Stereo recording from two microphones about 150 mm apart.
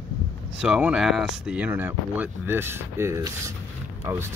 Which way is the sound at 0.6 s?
5° right (ahead or behind).